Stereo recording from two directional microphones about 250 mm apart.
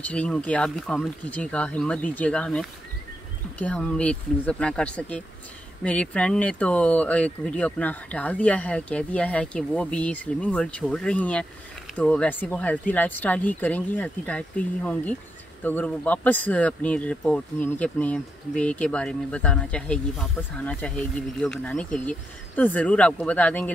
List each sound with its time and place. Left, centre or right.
0.0 s speech: centre